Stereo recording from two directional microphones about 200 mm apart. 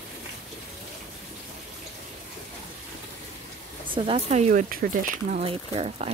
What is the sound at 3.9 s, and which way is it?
Speech, 30° right (ahead or behind).